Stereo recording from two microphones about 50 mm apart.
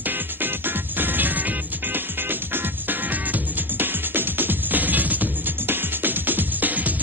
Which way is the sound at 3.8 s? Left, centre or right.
Right.